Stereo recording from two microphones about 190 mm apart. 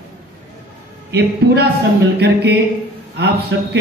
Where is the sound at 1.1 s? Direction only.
60° right (ahead or behind).